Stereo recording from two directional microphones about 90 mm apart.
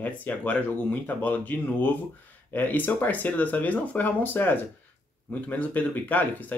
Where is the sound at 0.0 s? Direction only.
15° left (ahead or behind).